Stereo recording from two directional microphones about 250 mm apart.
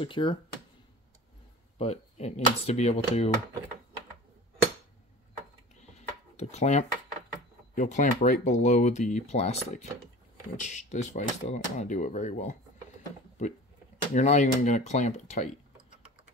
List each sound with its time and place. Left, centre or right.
0.0 s speech: centre
1.8 s speech: left
5.9 s a sound: left
7.7 s speech: left